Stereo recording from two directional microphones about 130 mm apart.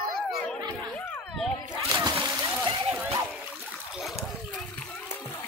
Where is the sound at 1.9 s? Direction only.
30° right (ahead or behind).